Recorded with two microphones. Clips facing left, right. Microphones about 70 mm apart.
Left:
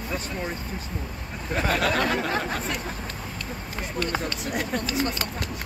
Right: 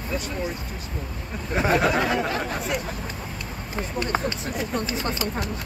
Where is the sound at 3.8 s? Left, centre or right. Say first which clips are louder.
Right 3 dB; right.